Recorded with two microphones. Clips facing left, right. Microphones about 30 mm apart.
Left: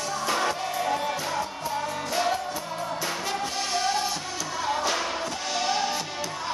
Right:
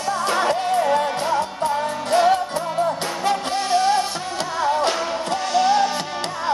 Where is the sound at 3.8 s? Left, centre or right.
Right.